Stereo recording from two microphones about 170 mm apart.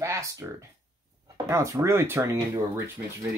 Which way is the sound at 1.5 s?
15° right (ahead or behind).